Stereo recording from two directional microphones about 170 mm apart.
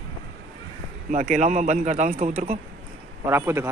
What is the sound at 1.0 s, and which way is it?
A man's voice, 45° right (ahead or behind).